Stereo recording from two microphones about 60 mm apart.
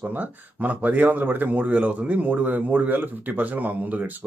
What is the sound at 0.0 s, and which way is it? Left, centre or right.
Speech, right.